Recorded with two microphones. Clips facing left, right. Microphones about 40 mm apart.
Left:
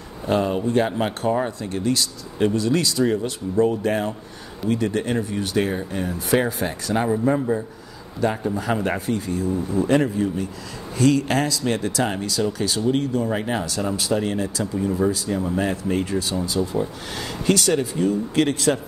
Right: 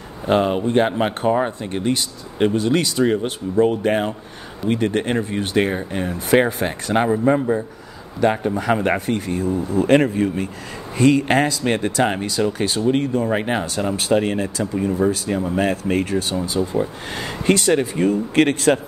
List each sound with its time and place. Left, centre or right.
0.3 s speech: right
0.9 s speech: right
11.0 s speech: right
16.6 s speech: right
17.2 s speech: right